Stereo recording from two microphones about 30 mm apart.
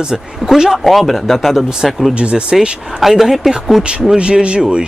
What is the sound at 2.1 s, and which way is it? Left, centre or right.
Speech, right.